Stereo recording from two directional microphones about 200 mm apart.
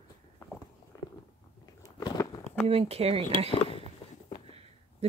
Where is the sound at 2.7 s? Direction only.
30° right (ahead or behind).